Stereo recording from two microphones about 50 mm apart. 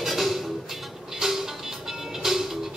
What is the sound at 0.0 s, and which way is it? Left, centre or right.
Music, centre.